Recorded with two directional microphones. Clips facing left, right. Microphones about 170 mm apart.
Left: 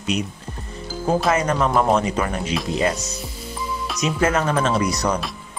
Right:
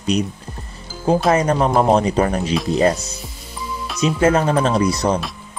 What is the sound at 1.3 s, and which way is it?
Speech, 30° right (ahead or behind).